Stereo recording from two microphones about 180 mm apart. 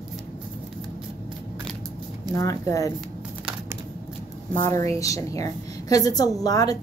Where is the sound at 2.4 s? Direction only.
20° left (ahead or behind).